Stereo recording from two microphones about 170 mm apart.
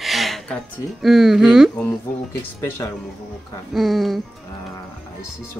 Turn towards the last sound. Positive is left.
turn(degrees=0)  # may be behind; listen again after turning